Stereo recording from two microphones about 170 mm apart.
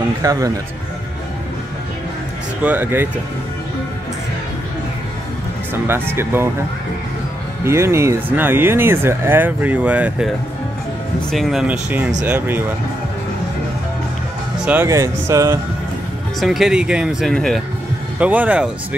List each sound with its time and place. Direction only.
0.2 s speech: 20° right (ahead or behind)
2.6 s speech: 10° right (ahead or behind)
5.9 s speech: 15° right (ahead or behind)
7.6 s speech: 15° right (ahead or behind)
14.6 s speech: 10° right (ahead or behind)
16.3 s speech: centre (ahead or behind)
18.2 s speech: 10° right (ahead or behind)